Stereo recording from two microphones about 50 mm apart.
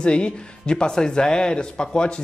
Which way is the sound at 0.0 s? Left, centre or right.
Centre.